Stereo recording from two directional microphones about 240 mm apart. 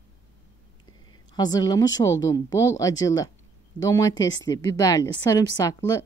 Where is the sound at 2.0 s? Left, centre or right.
Centre.